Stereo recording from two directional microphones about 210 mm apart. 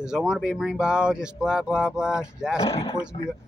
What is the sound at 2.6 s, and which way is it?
Speech, 25° left (ahead or behind).